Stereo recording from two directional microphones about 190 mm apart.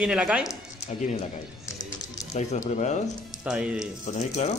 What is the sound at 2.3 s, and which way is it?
Speech, 35° left (ahead or behind).